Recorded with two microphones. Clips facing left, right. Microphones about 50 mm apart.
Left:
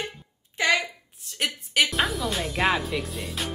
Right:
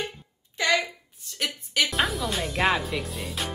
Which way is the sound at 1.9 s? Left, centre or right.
Centre.